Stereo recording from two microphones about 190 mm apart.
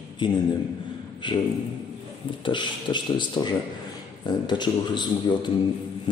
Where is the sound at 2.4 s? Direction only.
25° left (ahead or behind).